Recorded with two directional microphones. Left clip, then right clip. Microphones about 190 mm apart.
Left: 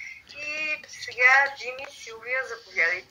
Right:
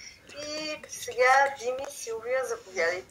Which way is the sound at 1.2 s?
5° right (ahead or behind).